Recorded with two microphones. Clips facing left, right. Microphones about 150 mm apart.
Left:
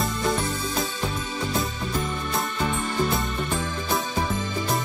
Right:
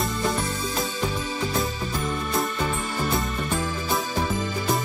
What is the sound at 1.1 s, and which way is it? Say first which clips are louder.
Music: right 1 dB; centre (ahead or behind).